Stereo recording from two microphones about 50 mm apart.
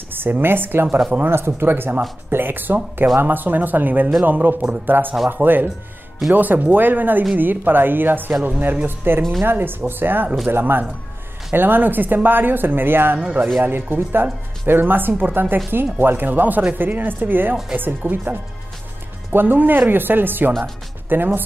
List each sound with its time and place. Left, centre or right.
0.1 s speech: right
0.8 s speech: centre
1.2 s speech: right